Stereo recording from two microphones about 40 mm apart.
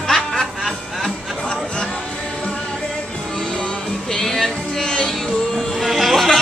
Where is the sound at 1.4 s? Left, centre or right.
Left.